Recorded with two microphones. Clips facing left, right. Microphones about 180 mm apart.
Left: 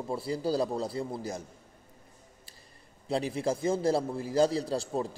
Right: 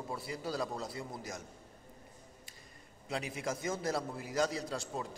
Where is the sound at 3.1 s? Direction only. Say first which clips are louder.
Left 8 dB; 30° left (ahead or behind).